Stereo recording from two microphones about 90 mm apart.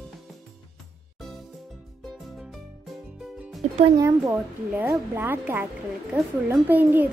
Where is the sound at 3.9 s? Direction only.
35° right (ahead or behind).